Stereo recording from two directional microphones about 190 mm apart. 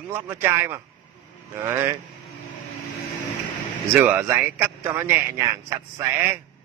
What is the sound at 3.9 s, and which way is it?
Speech, 10° right (ahead or behind).